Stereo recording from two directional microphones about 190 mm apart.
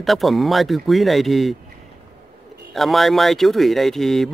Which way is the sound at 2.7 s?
Centre (ahead or behind).